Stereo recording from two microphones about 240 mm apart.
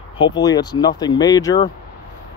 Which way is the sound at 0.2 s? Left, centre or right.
Centre.